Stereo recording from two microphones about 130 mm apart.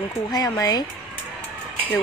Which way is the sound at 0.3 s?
30° left (ahead or behind).